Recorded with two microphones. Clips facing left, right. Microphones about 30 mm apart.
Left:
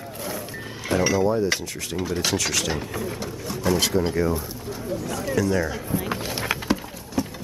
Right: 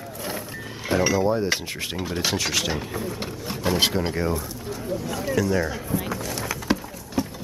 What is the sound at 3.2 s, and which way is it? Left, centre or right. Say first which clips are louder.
Speech: even; right.